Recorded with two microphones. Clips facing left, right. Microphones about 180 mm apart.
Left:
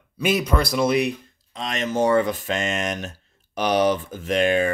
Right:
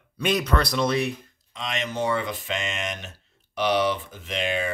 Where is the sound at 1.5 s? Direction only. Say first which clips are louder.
Left 5 dB; 40° left (ahead or behind).